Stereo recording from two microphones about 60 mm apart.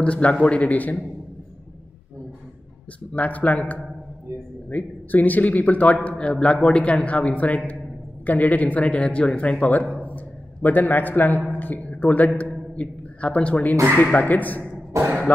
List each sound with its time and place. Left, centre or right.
0.0 s a man's voice: left
3.1 s a man's voice: left
11.5 s a sound: left
12.7 s a man's voice: left
14.9 s speech: right